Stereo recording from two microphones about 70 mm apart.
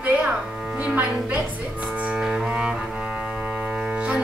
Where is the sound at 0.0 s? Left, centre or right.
Centre.